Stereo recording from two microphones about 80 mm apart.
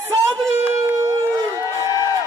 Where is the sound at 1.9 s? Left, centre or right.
Left.